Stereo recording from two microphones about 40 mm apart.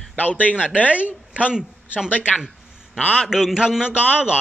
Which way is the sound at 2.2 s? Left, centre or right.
Right.